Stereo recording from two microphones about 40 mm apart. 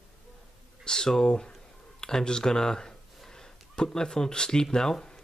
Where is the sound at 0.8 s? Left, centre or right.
Centre.